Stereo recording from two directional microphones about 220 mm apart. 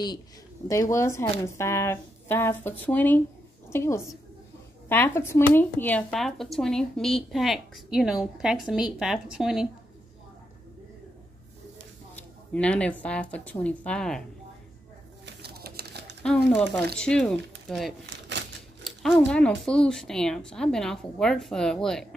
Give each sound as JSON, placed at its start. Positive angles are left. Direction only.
{"t": 0.7, "sound": "speech", "side_deg": 15}
{"t": 12.5, "sound": "speech", "side_deg": 5}
{"t": 15.2, "sound": "a sound", "side_deg": -45}
{"t": 16.2, "sound": "speech", "side_deg": 5}
{"t": 18.0, "sound": "a sound", "side_deg": -55}
{"t": 18.9, "sound": "speech", "side_deg": 5}